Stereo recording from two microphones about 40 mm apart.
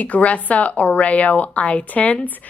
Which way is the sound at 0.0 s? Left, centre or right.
Left.